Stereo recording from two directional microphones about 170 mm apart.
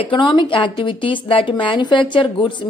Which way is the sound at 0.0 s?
30° left (ahead or behind).